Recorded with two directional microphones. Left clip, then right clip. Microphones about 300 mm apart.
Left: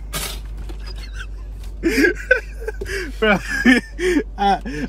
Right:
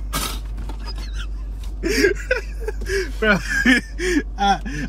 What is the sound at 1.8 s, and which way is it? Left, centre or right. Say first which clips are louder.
Speech: left 2 dB; centre.